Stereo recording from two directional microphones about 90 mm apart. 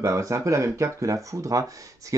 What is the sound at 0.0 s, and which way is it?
Speech, 35° right (ahead or behind).